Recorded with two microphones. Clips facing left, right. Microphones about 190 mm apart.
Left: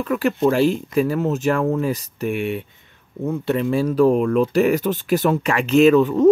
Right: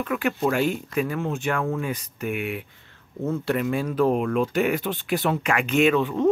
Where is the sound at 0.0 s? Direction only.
35° left (ahead or behind).